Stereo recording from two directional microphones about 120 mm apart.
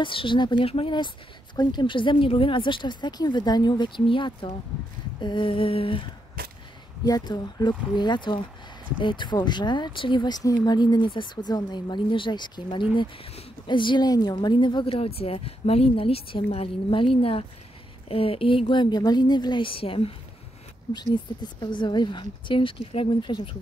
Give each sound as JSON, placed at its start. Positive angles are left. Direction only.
{"t": 0.0, "sound": "speech", "side_deg": 45}
{"t": 7.1, "sound": "speech", "side_deg": 35}
{"t": 15.0, "sound": "speech", "side_deg": 55}
{"t": 20.9, "sound": "speech", "side_deg": 35}